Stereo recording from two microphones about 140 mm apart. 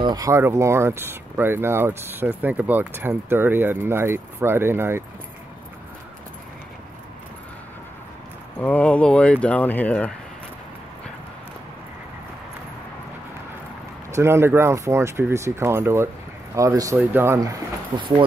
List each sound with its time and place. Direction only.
0.0 s speech: 25° right (ahead or behind)
8.5 s speech: 10° left (ahead or behind)
14.1 s speech: 20° right (ahead or behind)